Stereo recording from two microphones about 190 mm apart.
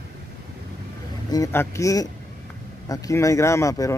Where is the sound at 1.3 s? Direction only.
15° left (ahead or behind).